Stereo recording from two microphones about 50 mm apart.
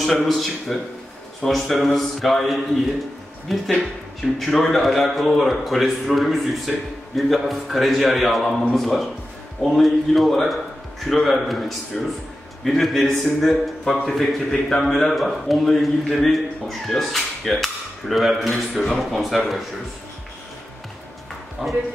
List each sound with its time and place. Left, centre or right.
0.0 s a man's voice: centre
21.6 s a man's voice: centre